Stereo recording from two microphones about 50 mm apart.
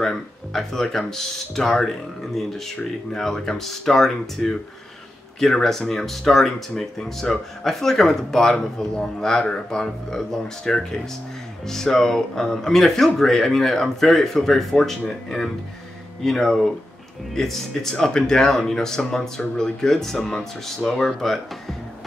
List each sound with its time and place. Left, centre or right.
0.0 s speech: centre